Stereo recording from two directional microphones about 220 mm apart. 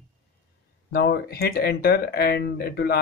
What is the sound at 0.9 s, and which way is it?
Speech, 45° left (ahead or behind).